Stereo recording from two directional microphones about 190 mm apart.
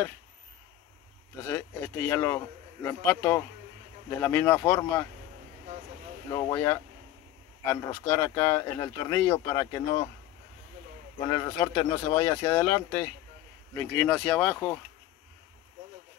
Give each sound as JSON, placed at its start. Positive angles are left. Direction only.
{"t": 1.5, "sound": "speech", "side_deg": 10}
{"t": 6.3, "sound": "speech", "side_deg": 20}
{"t": 11.1, "sound": "speech", "side_deg": 25}